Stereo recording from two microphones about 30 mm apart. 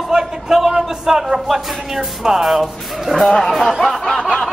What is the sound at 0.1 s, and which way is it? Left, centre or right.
A man's voice, centre.